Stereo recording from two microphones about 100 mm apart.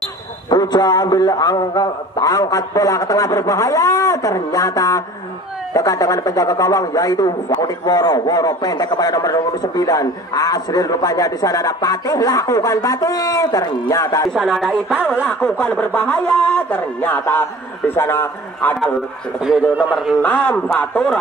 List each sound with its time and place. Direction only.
0.5 s a man's voice: 45° left (ahead or behind)
14.3 s speech: centre (ahead or behind)
14.7 s speech: 15° right (ahead or behind)
15.6 s a man's voice: 15° left (ahead or behind)
19.4 s speech: 5° right (ahead or behind)
20.2 s a man's voice: 15° left (ahead or behind)